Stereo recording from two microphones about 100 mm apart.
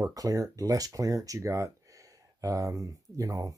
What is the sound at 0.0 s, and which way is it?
Speech, 35° right (ahead or behind).